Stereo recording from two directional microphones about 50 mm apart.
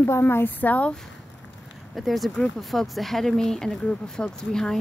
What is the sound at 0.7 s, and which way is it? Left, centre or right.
Speech, left.